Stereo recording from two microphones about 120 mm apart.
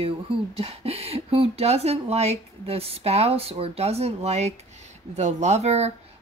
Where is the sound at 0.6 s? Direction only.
55° right (ahead or behind).